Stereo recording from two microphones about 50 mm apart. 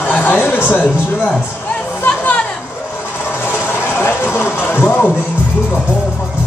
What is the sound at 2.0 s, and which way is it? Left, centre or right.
Chatter, left.